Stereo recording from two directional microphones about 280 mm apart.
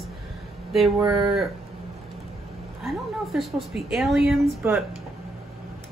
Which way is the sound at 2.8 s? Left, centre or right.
Centre.